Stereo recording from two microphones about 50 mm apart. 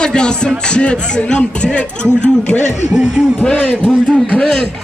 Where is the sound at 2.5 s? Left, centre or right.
Left.